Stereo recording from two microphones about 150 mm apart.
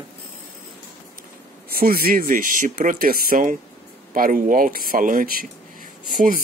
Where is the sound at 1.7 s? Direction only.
75° right (ahead or behind).